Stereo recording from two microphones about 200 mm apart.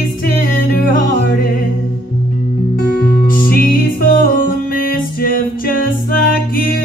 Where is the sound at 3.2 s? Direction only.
45° left (ahead or behind).